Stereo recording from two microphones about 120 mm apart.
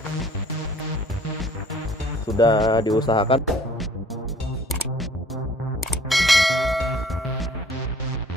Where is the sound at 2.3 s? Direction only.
35° left (ahead or behind).